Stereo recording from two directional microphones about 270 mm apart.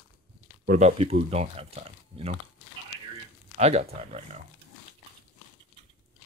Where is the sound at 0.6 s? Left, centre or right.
Right.